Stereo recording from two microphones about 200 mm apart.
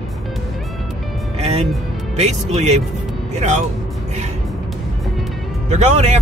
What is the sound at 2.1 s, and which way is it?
Speech, 35° right (ahead or behind).